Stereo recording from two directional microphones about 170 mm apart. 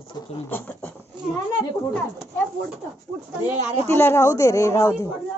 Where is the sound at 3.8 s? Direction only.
15° left (ahead or behind).